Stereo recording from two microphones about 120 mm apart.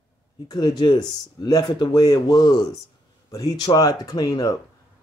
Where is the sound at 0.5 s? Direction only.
35° left (ahead or behind).